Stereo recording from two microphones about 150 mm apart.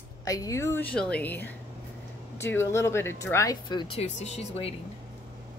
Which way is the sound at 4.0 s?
45° left (ahead or behind).